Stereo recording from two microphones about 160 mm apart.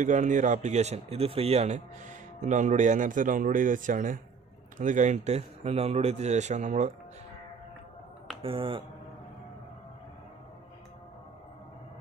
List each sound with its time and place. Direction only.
0.0 s speech: 50° right (ahead or behind)
8.4 s speech: 35° right (ahead or behind)